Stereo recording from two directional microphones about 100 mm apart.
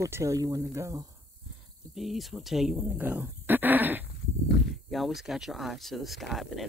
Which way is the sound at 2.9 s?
20° right (ahead or behind).